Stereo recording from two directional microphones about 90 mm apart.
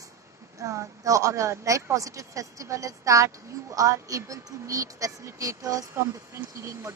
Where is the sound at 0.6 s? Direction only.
40° right (ahead or behind).